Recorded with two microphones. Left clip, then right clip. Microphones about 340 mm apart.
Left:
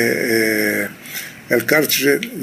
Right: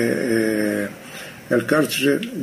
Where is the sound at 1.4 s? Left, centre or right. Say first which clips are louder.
Left 3 dB; centre.